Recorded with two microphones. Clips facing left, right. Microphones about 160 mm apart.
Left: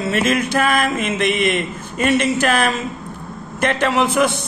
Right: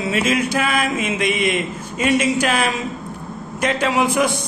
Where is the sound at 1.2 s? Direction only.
55° left (ahead or behind).